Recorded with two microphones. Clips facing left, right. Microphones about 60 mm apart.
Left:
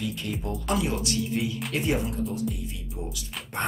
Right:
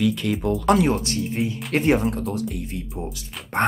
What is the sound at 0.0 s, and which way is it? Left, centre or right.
Speech, right.